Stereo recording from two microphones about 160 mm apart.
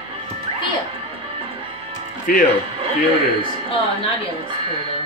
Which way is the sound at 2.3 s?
60° left (ahead or behind).